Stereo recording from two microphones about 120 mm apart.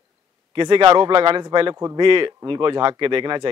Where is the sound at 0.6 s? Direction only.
40° right (ahead or behind).